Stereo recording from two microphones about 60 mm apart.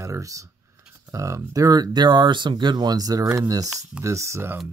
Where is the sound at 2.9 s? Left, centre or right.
Right.